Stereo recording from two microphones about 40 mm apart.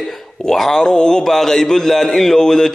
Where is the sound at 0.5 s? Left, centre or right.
Centre.